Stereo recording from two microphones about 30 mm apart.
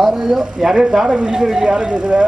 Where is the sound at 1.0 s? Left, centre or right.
Right.